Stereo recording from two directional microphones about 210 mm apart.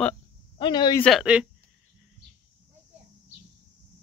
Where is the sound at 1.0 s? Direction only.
Centre (ahead or behind).